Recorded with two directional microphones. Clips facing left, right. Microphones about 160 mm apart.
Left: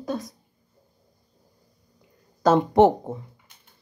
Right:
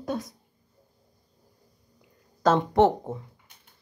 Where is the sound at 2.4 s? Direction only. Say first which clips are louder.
Left 3 dB; 5° left (ahead or behind).